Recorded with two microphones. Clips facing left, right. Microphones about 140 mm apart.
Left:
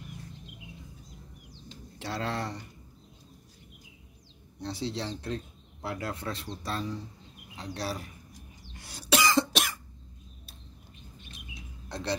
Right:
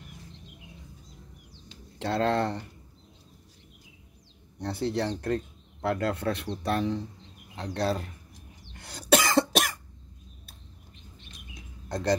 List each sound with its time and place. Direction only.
2.0 s speech: 60° right (ahead or behind)
4.6 s speech: 60° right (ahead or behind)
8.7 s cough: 55° right (ahead or behind)
11.3 s cricket: 50° right (ahead or behind)